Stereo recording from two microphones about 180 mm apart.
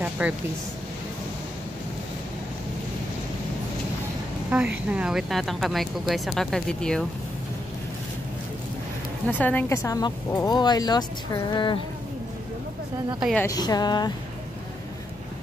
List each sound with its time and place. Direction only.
0.2 s speech: 5° right (ahead or behind)
4.5 s speech: 5° right (ahead or behind)
9.3 s a woman's voice: 10° left (ahead or behind); by 11.8 s 25° left (ahead or behind)
13.4 s a woman's voice: 20° left (ahead or behind)